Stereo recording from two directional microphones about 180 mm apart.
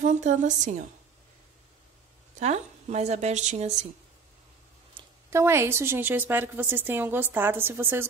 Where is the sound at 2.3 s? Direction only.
40° right (ahead or behind).